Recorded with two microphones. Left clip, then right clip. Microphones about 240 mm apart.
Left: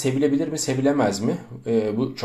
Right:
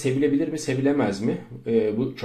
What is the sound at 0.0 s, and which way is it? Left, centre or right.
Speech, left.